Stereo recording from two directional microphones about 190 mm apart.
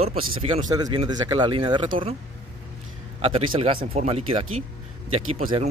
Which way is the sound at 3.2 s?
30° right (ahead or behind).